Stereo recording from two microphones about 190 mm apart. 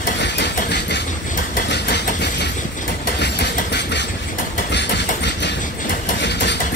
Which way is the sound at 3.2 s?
65° left (ahead or behind).